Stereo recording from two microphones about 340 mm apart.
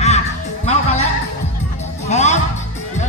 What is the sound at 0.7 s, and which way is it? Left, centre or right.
Music, centre.